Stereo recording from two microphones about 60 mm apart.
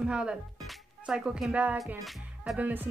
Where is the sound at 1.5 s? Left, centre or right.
Right.